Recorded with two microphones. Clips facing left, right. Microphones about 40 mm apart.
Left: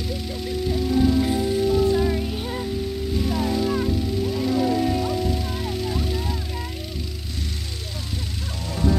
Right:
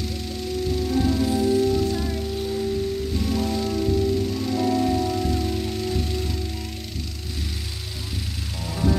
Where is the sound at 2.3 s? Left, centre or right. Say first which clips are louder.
Right 2 dB; left.